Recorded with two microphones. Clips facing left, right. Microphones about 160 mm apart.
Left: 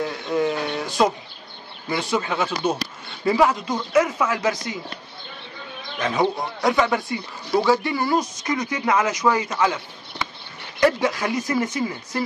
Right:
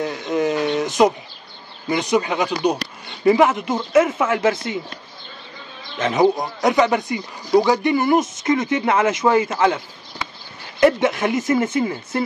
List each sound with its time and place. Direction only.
0.0 s speech: 20° right (ahead or behind)
5.9 s speech: 20° right (ahead or behind)
10.8 s speech: 25° right (ahead or behind)